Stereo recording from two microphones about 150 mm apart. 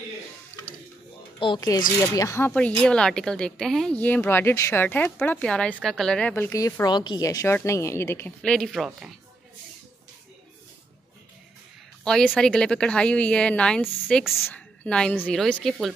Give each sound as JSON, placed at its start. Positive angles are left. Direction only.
{"t": 1.4, "sound": "speech", "side_deg": 30}
{"t": 2.5, "sound": "speech", "side_deg": 5}
{"t": 8.4, "sound": "speech", "side_deg": 5}
{"t": 12.0, "sound": "a woman's voice", "side_deg": 5}